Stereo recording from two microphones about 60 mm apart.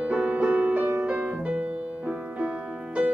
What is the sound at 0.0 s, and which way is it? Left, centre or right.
Music, right.